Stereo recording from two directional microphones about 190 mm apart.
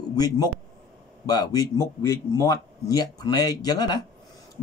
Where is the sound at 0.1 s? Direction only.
20° left (ahead or behind).